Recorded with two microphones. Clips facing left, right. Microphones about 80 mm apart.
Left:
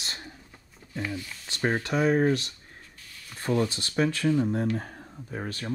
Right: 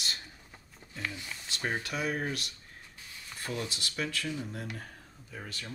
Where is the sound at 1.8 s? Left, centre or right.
Left.